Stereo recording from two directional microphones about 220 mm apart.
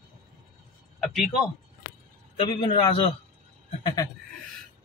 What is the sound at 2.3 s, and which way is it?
A man's voice, 20° left (ahead or behind).